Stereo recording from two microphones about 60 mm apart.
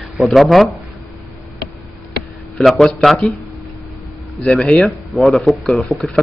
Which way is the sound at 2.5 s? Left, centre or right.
Centre.